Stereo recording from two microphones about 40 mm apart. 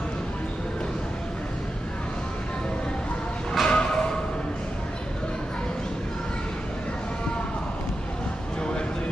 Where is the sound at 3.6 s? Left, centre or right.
Left.